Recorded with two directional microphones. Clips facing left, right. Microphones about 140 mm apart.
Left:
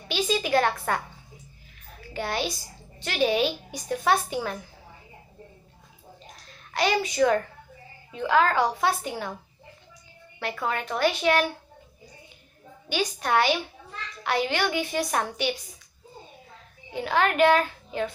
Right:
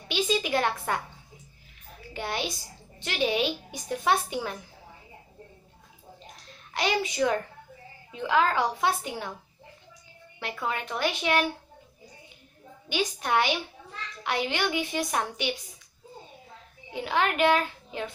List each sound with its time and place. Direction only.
0.1 s a woman's voice: 15° right (ahead or behind)
2.1 s a woman's voice: 15° right (ahead or behind)
6.7 s a child's voice: 20° right (ahead or behind)
10.4 s a woman's voice: 15° right (ahead or behind)
12.9 s a woman's voice: 15° right (ahead or behind)
16.9 s a woman's voice: 15° right (ahead or behind)